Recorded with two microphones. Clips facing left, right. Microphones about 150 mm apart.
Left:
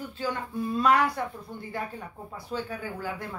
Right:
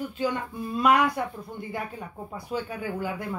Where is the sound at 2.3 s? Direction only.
15° right (ahead or behind).